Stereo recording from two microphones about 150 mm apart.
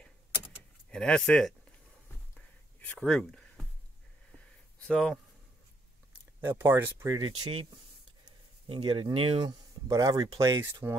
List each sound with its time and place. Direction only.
0.8 s speech: 5° left (ahead or behind)
2.3 s a sound: 10° left (ahead or behind)
4.8 s speech: 5° left (ahead or behind)
6.4 s speech: 15° right (ahead or behind)
7.2 s speech: 30° right (ahead or behind)